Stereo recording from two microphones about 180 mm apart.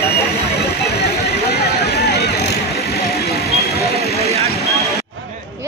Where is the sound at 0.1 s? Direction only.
60° left (ahead or behind).